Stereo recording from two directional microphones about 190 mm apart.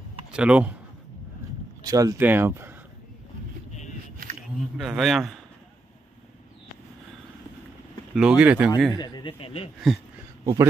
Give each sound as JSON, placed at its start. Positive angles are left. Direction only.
{"t": 0.3, "sound": "speech", "side_deg": -5}
{"t": 1.9, "sound": "speech", "side_deg": -20}
{"t": 4.4, "sound": "speech", "side_deg": 0}
{"t": 8.1, "sound": "speech", "side_deg": -5}
{"t": 8.9, "sound": "speech", "side_deg": 20}
{"t": 10.4, "sound": "a man's voice", "side_deg": -20}